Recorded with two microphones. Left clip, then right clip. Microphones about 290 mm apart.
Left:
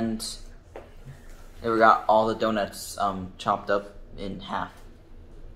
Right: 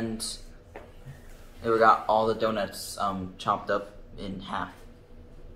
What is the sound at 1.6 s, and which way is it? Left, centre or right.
Speech, centre.